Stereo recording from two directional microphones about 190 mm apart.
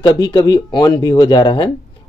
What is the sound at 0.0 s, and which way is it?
A man's voice, 20° left (ahead or behind).